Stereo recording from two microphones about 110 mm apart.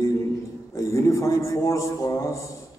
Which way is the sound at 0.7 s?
30° left (ahead or behind).